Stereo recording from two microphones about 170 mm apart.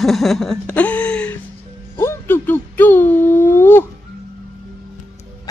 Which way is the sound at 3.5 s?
10° left (ahead or behind).